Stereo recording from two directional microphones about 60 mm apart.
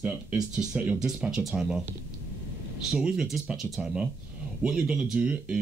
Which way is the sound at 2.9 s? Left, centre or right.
Centre.